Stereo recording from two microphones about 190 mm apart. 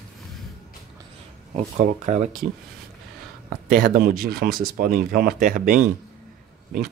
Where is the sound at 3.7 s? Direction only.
50° right (ahead or behind).